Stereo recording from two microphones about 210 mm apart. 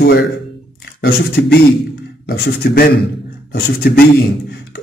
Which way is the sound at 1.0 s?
50° left (ahead or behind).